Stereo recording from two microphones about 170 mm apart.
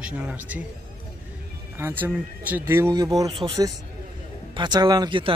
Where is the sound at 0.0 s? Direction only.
5° right (ahead or behind).